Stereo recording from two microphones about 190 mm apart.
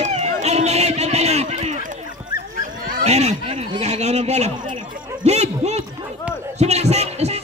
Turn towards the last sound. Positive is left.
turn(degrees=-35)  # may be behind; listen again after turning